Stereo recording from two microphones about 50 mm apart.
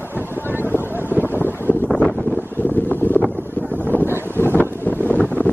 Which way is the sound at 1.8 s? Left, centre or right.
Left.